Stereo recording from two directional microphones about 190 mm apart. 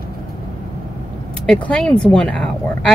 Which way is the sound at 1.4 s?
5° left (ahead or behind).